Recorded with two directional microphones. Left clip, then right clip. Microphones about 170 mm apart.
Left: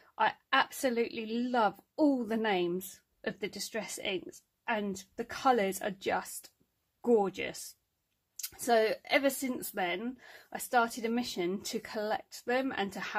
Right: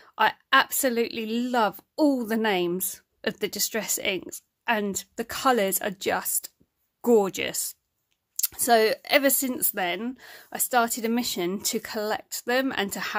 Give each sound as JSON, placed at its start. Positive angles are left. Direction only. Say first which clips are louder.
{"t": 0.0, "sound": "a woman's voice", "louder": "right 7 dB", "side_deg": -35}